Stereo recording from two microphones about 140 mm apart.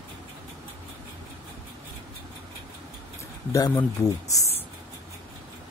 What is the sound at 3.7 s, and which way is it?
Speech, 20° left (ahead or behind).